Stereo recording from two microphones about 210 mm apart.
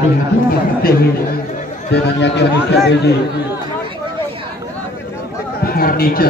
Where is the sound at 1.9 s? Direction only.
55° left (ahead or behind).